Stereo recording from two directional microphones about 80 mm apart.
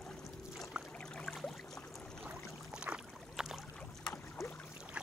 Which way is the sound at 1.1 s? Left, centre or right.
Centre.